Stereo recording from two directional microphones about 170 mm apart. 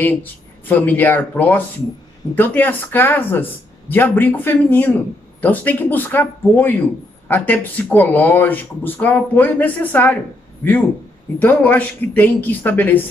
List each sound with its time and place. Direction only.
0.0 s speech: 10° left (ahead or behind)
11.3 s speech: 10° left (ahead or behind)